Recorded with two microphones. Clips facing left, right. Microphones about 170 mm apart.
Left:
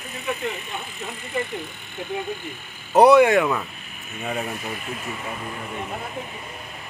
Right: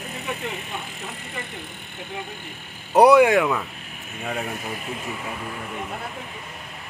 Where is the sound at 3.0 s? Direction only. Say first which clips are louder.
Even; 10° right (ahead or behind).